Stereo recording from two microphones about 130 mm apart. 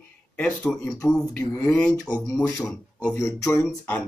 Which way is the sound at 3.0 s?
15° left (ahead or behind).